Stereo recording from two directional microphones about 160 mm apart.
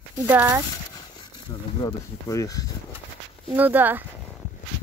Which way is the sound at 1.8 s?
20° left (ahead or behind).